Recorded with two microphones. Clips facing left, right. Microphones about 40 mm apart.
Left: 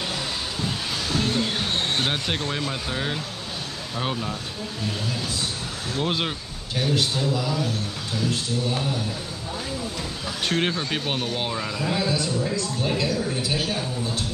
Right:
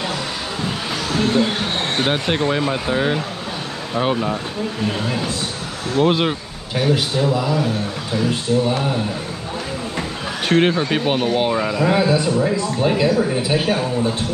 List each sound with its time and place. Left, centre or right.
0.7 s vehicle: right
2.0 s speech: centre; by 5.3 s right
5.9 s speech: centre
10.4 s speech: right
11.8 s speech: right
12.8 s speech: right
13.7 s speech: right